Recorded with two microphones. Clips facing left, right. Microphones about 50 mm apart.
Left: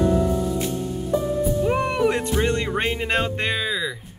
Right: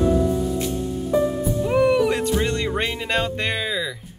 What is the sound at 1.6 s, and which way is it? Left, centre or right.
Music, centre.